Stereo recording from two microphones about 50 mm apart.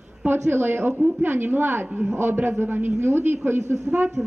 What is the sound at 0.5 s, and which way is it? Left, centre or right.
A man's voice, right.